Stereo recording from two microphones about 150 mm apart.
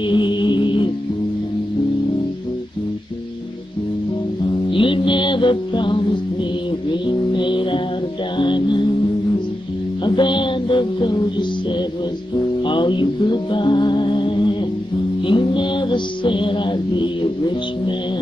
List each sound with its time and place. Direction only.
0.1 s music: 30° left (ahead or behind)
4.6 s music: 35° left (ahead or behind)
10.0 s music: 30° left (ahead or behind)
12.6 s music: 30° left (ahead or behind)